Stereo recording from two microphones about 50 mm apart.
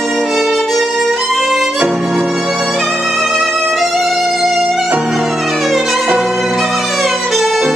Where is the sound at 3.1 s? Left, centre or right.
Centre.